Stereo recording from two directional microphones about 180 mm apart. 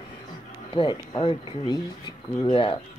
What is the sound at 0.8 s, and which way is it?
Speech, 30° left (ahead or behind).